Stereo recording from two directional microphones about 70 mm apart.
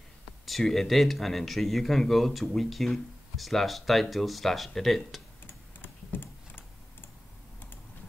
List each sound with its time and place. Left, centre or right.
0.5 s speech: centre
5.5 s typing: left